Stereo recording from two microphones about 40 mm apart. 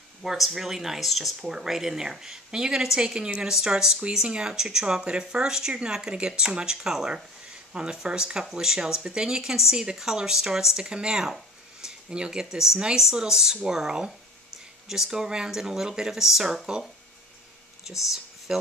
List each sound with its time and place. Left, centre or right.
0.2 s speech: centre
17.8 s speech: centre